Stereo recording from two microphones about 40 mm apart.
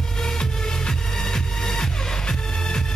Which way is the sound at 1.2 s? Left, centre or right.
Centre.